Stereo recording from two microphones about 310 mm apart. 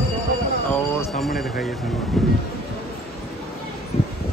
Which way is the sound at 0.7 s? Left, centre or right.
Centre.